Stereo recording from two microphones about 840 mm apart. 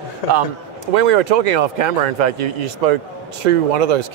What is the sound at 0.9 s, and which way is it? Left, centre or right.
Speech, right.